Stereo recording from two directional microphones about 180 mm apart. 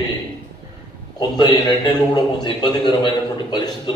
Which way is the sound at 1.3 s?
25° left (ahead or behind).